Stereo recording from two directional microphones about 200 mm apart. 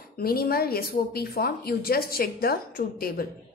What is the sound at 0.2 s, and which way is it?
A woman's voice, 50° left (ahead or behind).